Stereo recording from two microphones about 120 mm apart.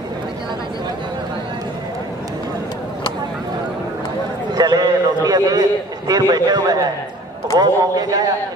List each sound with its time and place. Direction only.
4.6 s a man's voice: 35° right (ahead or behind)